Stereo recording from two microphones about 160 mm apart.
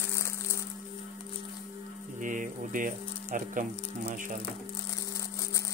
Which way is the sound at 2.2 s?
55° right (ahead or behind).